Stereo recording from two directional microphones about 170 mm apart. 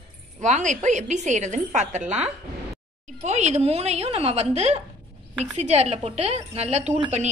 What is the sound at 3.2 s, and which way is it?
A woman's voice, 45° right (ahead or behind).